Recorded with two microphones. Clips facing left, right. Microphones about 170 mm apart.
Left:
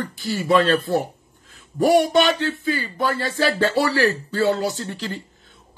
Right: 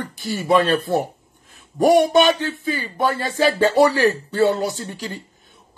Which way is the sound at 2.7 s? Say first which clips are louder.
Right 2 dB; 20° right (ahead or behind).